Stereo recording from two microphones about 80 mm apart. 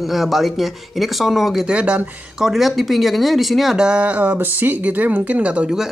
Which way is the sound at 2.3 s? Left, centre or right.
Centre.